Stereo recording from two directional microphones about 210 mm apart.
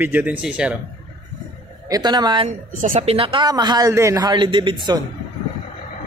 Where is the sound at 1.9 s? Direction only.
20° right (ahead or behind).